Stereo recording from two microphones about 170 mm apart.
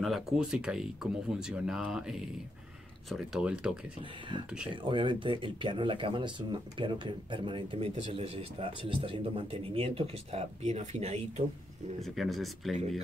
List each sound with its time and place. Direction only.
0.0 s speech: centre (ahead or behind)
4.8 s speech: 30° right (ahead or behind)
12.0 s speech: centre (ahead or behind)